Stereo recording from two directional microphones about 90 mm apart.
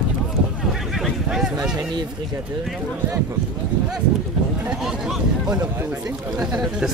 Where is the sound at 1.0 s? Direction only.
5° right (ahead or behind).